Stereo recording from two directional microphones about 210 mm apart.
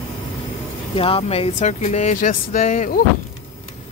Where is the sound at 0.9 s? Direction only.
30° left (ahead or behind).